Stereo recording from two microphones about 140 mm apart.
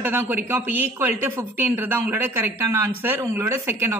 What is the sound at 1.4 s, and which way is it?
Speech, 15° right (ahead or behind).